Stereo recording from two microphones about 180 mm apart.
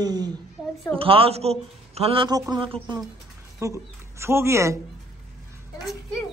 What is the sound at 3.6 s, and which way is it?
Speech, 15° right (ahead or behind).